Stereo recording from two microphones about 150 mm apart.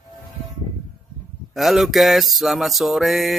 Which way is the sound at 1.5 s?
Centre (ahead or behind).